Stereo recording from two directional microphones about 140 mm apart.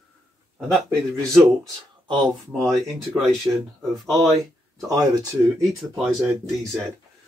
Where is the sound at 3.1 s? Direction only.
Centre (ahead or behind).